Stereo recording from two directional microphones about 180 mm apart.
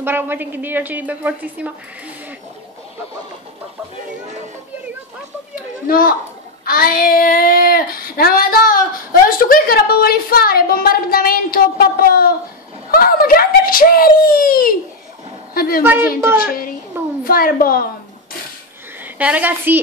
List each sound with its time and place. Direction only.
0.0 s a woman's voice: 10° right (ahead or behind)
5.9 s child singing: 55° left (ahead or behind)
9.4 s a woman's voice: 55° left (ahead or behind)
12.9 s child singing: 55° left (ahead or behind)
15.5 s a woman's voice: 55° left (ahead or behind)
15.8 s a woman's voice: 10° right (ahead or behind)
17.2 s a woman's voice: 55° left (ahead or behind)
19.1 s a woman's voice: 10° right (ahead or behind)